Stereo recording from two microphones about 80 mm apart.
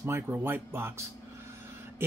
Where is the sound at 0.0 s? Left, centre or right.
Right.